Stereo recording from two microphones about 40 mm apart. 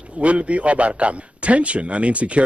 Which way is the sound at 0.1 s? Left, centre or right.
Right.